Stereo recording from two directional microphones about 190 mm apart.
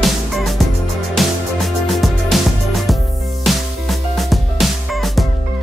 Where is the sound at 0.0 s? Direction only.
Centre (ahead or behind).